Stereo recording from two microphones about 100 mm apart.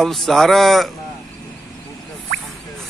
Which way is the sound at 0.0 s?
Centre (ahead or behind).